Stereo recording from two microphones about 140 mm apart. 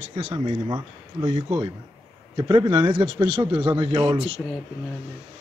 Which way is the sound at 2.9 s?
40° right (ahead or behind).